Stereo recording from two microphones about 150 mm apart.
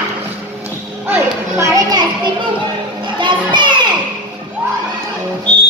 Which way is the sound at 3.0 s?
30° right (ahead or behind).